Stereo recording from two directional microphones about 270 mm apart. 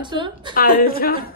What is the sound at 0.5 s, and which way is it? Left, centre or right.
Speech, left.